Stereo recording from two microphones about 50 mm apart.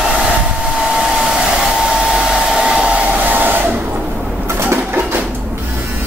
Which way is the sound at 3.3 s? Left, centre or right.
Right.